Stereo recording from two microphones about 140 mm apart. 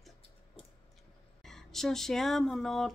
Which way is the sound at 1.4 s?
Centre (ahead or behind).